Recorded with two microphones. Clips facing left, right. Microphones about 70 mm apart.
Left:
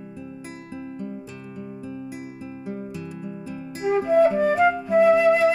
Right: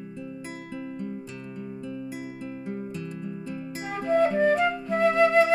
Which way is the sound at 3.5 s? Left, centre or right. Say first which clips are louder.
Left 12 dB; centre.